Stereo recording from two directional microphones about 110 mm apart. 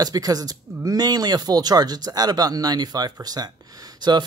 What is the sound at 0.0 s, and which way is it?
Speech, 35° right (ahead or behind).